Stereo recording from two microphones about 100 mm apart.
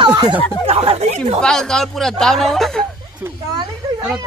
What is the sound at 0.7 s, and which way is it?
Speech, 70° right (ahead or behind).